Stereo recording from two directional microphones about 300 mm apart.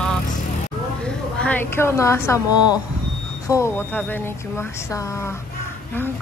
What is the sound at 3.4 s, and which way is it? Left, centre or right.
Speech, centre.